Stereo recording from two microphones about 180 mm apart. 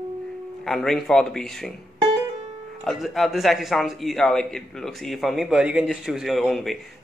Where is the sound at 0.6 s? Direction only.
Centre (ahead or behind).